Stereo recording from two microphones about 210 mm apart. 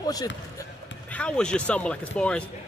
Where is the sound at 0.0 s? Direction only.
15° left (ahead or behind).